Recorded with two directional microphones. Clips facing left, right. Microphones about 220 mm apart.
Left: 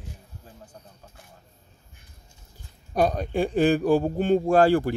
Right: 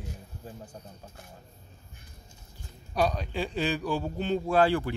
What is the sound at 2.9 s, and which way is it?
A man's voice, 50° left (ahead or behind).